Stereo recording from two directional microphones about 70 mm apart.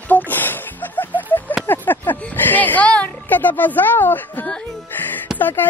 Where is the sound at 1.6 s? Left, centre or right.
Left.